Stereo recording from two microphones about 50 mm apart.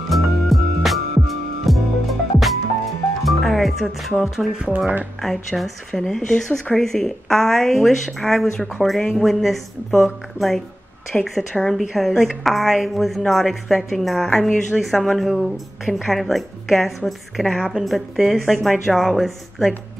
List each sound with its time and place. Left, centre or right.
0.1 s music: centre
4.7 s speech: right
5.2 s a woman's voice: centre